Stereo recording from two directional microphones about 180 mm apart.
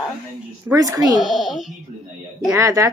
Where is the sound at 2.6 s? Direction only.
15° right (ahead or behind).